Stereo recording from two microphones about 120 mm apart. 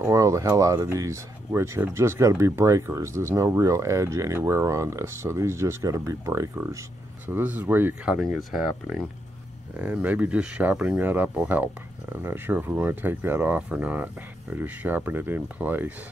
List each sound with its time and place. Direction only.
0.1 s speech: 25° right (ahead or behind)
7.2 s speech: 15° right (ahead or behind)
8.1 s speech: centre (ahead or behind)